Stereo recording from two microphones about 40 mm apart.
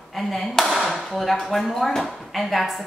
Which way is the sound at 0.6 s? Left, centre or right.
Centre.